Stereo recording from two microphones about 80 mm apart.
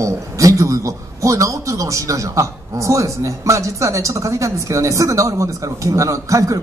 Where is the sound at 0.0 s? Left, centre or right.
Right.